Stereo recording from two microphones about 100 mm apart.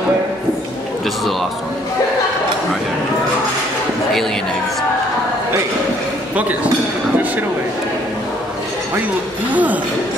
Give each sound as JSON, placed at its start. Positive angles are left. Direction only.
{"t": 9.5, "sound": "speech", "side_deg": -15}